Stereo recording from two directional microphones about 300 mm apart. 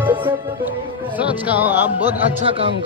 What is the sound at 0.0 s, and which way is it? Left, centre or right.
Music, centre.